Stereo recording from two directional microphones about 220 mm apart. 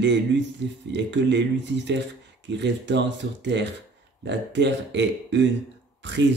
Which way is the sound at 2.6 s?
50° right (ahead or behind).